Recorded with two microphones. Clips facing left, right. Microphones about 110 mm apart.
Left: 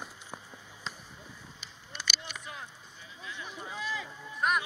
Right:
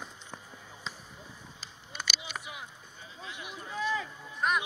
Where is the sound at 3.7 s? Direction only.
45° right (ahead or behind).